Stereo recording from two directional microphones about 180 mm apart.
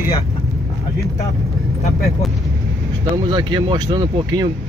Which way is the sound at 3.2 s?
20° right (ahead or behind).